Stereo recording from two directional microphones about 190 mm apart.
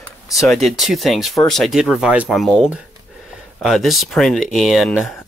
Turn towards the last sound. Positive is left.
turn(degrees=0)  # may be behind; listen again after turning